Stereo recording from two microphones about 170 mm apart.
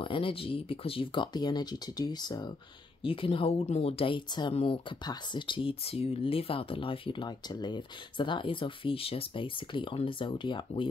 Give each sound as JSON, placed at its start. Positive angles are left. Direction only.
{"t": 0.0, "sound": "speech", "side_deg": 30}